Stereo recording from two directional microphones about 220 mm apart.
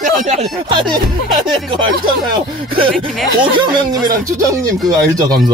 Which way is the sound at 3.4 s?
20° right (ahead or behind).